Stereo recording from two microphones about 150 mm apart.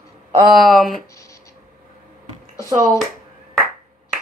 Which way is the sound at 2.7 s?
20° right (ahead or behind).